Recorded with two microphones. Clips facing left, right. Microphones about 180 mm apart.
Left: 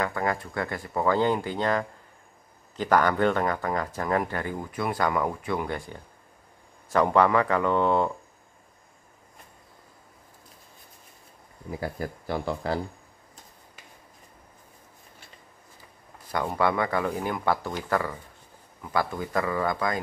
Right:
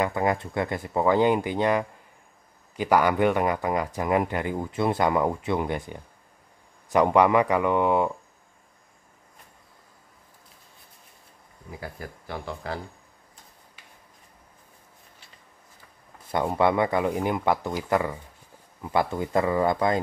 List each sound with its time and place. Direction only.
0.0 s speech: 20° right (ahead or behind)
11.8 s speech: 40° left (ahead or behind)
16.3 s speech: 25° right (ahead or behind)